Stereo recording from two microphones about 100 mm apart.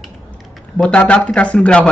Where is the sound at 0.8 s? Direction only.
10° left (ahead or behind).